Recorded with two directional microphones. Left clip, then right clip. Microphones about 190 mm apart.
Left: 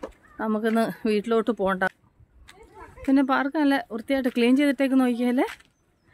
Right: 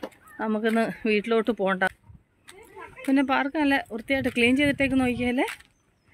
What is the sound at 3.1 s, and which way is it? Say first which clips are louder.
Speech: left 1 dB; 15° left (ahead or behind).